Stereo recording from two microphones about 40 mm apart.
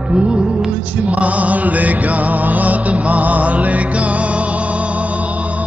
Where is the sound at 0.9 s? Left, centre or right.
Right.